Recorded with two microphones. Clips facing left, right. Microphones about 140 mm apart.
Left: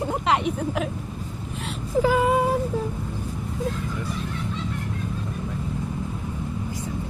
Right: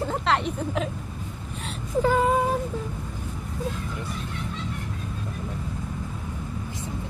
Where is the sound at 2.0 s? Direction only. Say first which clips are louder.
Left 1 dB; 5° left (ahead or behind).